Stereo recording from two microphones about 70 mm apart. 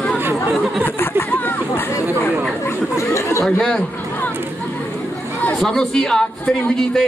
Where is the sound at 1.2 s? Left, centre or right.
Left.